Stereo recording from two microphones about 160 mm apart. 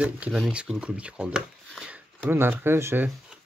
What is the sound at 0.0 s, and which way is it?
Speech, 5° right (ahead or behind).